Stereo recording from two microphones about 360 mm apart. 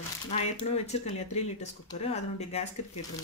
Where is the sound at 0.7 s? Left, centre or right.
Centre.